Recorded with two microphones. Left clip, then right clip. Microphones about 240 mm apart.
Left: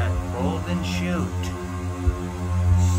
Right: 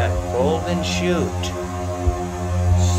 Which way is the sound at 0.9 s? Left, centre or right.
Centre.